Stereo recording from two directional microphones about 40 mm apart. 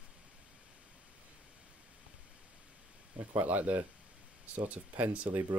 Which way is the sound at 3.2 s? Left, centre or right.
Right.